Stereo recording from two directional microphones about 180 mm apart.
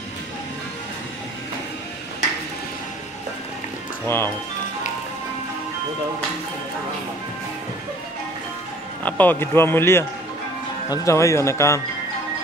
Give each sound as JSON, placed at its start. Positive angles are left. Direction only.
{"t": 4.0, "sound": "speech", "side_deg": 15}
{"t": 9.0, "sound": "speech", "side_deg": 10}